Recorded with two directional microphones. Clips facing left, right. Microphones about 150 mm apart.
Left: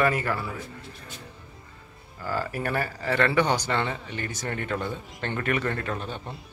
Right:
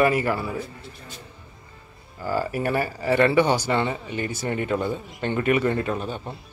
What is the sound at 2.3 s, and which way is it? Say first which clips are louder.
Speech: right 4 dB; 10° right (ahead or behind).